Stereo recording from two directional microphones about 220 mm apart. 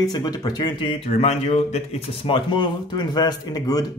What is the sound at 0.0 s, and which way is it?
Speech, 15° left (ahead or behind).